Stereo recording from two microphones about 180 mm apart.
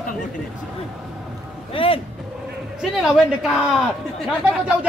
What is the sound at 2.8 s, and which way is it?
Speech, 5° right (ahead or behind).